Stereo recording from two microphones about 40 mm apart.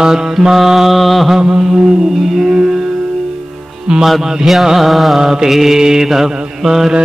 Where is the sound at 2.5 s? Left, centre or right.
Centre.